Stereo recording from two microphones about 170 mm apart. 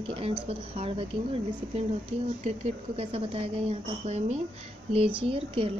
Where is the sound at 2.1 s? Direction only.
35° right (ahead or behind).